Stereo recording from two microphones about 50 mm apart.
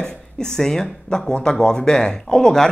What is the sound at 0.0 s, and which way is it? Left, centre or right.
Speech, centre.